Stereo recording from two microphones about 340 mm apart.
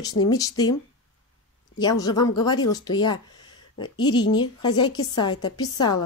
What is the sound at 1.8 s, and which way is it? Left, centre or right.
Speech, centre.